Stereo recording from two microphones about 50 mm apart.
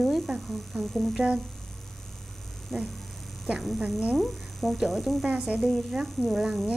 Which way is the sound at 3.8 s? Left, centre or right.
Centre.